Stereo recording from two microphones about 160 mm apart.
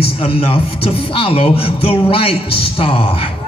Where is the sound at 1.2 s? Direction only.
35° left (ahead or behind).